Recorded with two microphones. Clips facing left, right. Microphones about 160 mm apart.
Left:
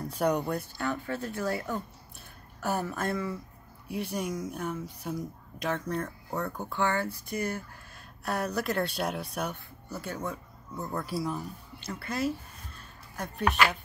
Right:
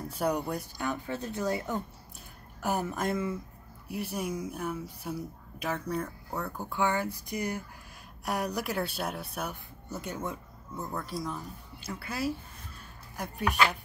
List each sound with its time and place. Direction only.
0.2 s speech: 10° right (ahead or behind)
3.9 s speech: 5° right (ahead or behind)
9.8 s speech: 20° right (ahead or behind)
10.9 s speech: centre (ahead or behind)
11.8 s speech: 10° right (ahead or behind)